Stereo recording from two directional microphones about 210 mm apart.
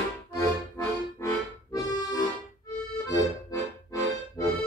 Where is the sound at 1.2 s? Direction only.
15° left (ahead or behind).